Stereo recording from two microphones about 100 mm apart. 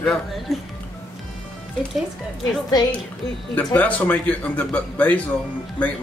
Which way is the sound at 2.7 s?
40° left (ahead or behind).